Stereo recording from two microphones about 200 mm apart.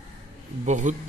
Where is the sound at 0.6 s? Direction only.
35° right (ahead or behind).